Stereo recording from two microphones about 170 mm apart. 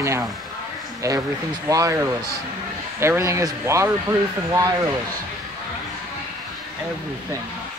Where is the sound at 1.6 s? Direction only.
20° right (ahead or behind).